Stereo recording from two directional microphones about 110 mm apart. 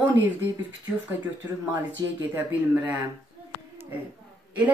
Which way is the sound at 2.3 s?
15° right (ahead or behind).